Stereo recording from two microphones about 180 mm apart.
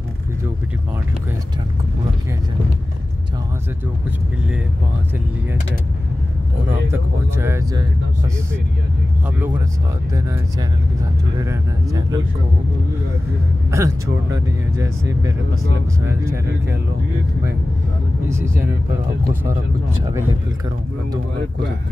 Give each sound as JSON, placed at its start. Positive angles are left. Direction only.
{"t": 6.7, "sound": "speech", "side_deg": -15}
{"t": 11.3, "sound": "speech", "side_deg": -20}
{"t": 13.7, "sound": "speech", "side_deg": -15}
{"t": 18.3, "sound": "speech", "side_deg": -15}